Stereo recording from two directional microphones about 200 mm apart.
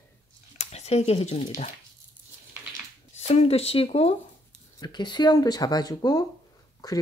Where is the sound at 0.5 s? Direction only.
35° left (ahead or behind).